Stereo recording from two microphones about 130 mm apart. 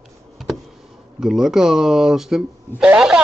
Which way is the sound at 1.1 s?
5° right (ahead or behind).